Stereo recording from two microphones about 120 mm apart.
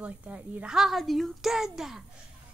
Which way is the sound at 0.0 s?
10° right (ahead or behind).